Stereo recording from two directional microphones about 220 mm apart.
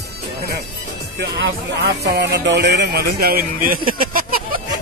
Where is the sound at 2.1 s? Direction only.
50° right (ahead or behind).